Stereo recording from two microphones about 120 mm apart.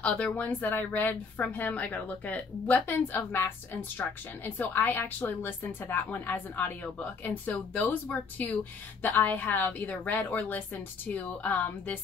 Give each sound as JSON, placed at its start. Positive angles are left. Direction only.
{"t": 0.0, "sound": "a woman's voice", "side_deg": 10}